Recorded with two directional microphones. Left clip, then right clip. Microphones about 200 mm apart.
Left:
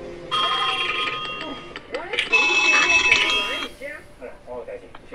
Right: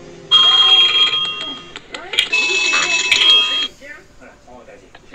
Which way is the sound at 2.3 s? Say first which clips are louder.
Left 1 dB; 15° left (ahead or behind).